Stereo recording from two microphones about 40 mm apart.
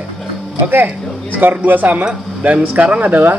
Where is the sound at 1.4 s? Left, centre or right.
Right.